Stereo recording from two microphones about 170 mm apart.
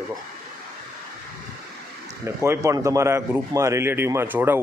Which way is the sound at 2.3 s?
15° right (ahead or behind).